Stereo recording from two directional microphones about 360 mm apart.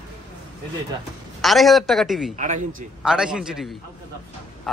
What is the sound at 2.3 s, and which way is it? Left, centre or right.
Speech, centre.